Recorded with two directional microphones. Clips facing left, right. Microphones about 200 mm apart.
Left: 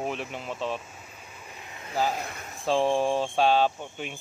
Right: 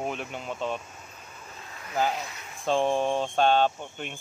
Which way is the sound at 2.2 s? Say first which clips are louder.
Left 3 dB; 55° left (ahead or behind).